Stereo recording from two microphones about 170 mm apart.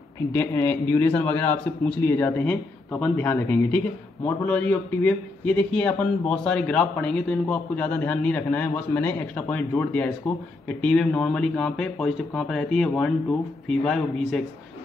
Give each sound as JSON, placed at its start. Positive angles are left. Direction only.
{"t": 0.3, "sound": "speech", "side_deg": 15}